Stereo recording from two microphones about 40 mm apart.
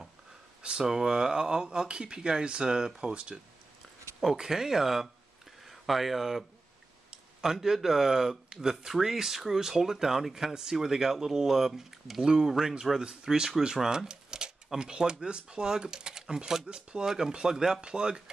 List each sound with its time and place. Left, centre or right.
0.7 s speech: centre
4.4 s speech: centre